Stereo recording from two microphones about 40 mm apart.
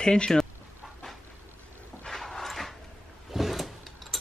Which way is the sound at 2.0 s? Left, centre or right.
Centre.